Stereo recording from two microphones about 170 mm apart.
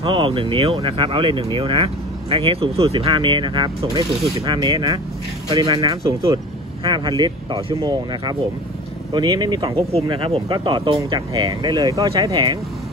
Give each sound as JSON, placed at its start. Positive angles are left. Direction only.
{"t": 0.0, "sound": "speech", "side_deg": -30}
{"t": 9.8, "sound": "speech", "side_deg": -35}